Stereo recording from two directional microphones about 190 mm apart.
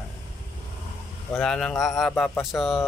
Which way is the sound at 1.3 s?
Centre (ahead or behind).